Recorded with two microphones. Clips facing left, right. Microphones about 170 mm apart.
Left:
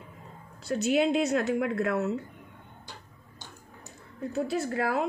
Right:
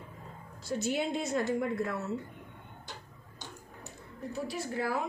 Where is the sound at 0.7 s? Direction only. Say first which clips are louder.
Left 4 dB; 80° left.